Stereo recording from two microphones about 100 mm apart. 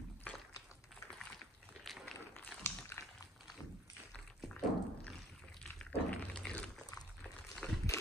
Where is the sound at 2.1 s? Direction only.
20° left (ahead or behind).